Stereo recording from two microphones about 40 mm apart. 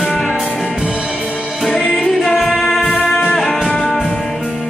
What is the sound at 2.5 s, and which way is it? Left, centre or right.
Music, centre.